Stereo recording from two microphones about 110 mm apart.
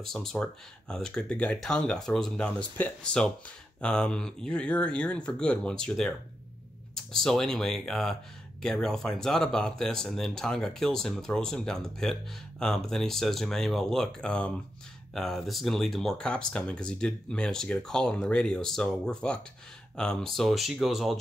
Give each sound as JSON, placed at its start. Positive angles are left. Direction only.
{"t": 0.0, "sound": "speech", "side_deg": 5}